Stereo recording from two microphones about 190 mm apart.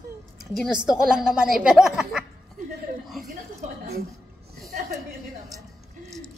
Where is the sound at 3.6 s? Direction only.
40° right (ahead or behind).